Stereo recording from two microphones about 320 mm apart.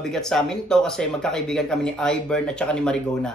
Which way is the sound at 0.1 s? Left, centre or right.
Centre.